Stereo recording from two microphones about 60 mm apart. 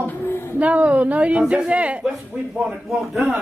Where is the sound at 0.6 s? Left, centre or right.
Right.